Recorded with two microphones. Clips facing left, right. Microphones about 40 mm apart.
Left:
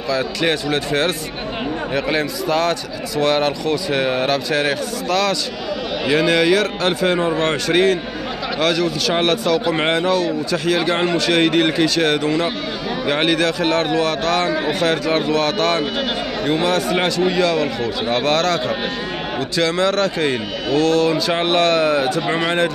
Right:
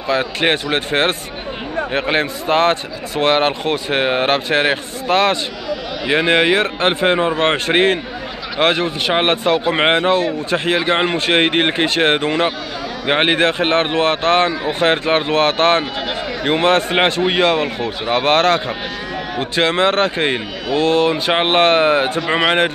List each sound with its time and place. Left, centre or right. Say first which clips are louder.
0.1 s a man's voice: right 3 dB; right